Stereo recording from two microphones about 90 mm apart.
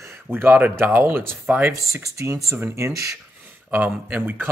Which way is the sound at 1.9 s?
35° right (ahead or behind).